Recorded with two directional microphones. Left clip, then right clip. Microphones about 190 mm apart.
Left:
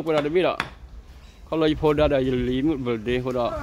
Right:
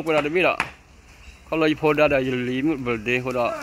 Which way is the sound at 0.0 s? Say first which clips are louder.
Right 1 dB; centre (ahead or behind).